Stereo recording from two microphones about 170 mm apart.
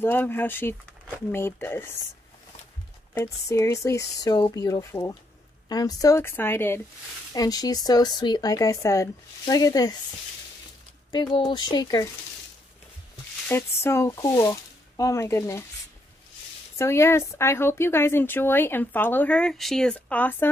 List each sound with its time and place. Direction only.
0.0 s speech: 10° left (ahead or behind)
3.2 s speech: 15° left (ahead or behind)
11.1 s speech: 25° left (ahead or behind)
13.5 s speech: 15° left (ahead or behind)
16.7 s speech: 15° left (ahead or behind)